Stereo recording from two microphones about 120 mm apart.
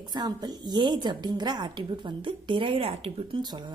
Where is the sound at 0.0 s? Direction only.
35° right (ahead or behind); by 3.3 s 55° right (ahead or behind).